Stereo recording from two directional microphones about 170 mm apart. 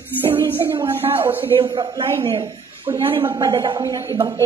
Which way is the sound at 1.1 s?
10° right (ahead or behind).